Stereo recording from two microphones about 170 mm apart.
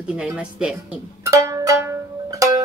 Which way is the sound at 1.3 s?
20° right (ahead or behind).